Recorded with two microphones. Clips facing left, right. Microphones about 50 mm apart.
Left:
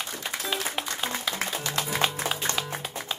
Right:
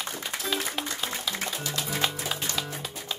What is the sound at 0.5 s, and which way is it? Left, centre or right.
Music, left.